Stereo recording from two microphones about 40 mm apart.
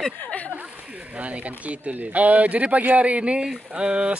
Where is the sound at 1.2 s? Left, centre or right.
Right.